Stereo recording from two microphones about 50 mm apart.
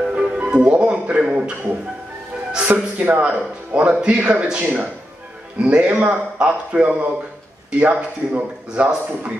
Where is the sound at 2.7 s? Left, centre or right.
Right.